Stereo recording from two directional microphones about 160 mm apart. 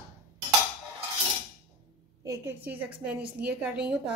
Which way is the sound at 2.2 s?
15° right (ahead or behind).